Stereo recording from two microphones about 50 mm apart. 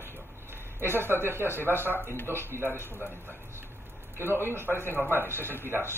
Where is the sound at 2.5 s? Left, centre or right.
Right.